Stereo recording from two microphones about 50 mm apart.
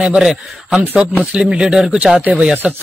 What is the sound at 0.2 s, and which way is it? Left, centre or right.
Speech, centre.